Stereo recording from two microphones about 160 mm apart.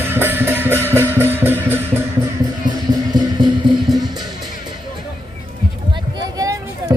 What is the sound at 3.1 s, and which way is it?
Music, 25° right (ahead or behind).